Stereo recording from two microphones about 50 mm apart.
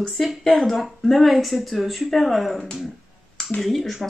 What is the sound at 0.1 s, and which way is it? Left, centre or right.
Speech, centre.